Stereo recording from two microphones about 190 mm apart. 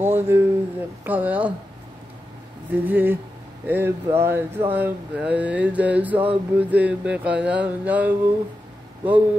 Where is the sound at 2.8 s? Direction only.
10° right (ahead or behind).